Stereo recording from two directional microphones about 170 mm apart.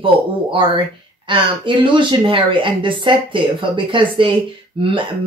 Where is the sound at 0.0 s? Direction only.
30° right (ahead or behind).